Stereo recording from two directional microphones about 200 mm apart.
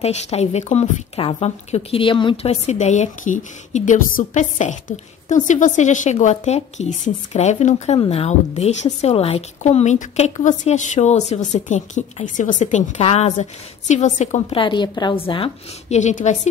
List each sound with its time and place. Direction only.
0.0 s a woman's voice: 35° left (ahead or behind)